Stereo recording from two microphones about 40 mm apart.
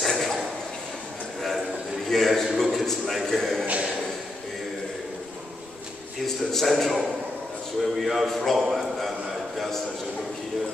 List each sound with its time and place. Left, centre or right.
0.0 s a sound: centre
2.0 s a man's voice: centre
3.6 s speech: right
6.2 s a man's voice: centre